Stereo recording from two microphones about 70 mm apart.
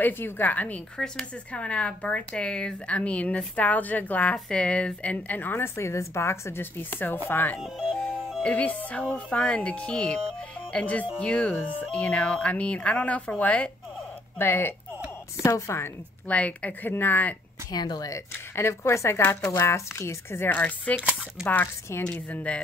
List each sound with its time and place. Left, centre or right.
0.0 s speech: left
5.8 s speech: left
7.9 s music: centre
8.4 s speech: left
14.4 s speech: left
15.3 s speech: left
16.3 s speech: left
17.6 s a woman's voice: left
18.5 s speech: left
20.5 s speech: centre
22.0 s speech: centre